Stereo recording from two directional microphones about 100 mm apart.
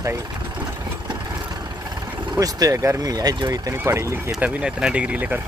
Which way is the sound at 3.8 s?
25° right (ahead or behind).